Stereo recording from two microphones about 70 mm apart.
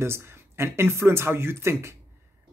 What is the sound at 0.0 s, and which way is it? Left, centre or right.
Speech, right.